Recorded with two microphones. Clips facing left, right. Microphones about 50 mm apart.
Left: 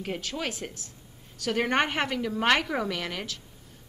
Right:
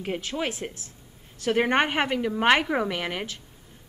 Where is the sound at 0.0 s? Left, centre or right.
Centre.